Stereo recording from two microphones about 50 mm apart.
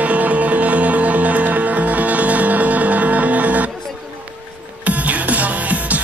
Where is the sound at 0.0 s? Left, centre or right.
Right.